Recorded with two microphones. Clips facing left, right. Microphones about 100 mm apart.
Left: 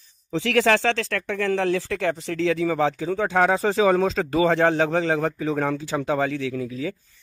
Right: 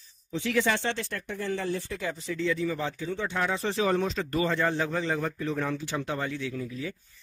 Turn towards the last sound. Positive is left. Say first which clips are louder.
# left 7 dB
turn(degrees=90)